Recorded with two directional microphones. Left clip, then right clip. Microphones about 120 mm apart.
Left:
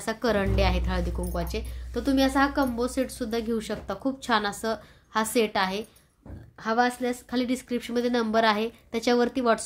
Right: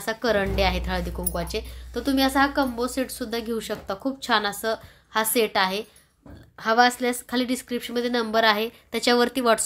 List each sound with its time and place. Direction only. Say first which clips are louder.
0.0 s a woman's voice: right 3 dB; centre (ahead or behind); by 6.9 s 15° right (ahead or behind)
7.0 s a woman's voice: right 4 dB; 30° right (ahead or behind)
7.3 s a woman's voice: right 2 dB; 5° right (ahead or behind)